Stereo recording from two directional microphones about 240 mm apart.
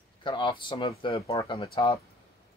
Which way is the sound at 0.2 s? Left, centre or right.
Centre.